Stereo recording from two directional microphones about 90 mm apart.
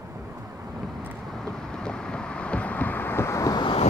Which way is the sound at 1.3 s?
5° left (ahead or behind).